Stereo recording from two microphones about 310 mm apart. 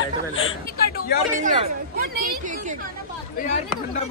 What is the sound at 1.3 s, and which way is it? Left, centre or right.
Speech, right.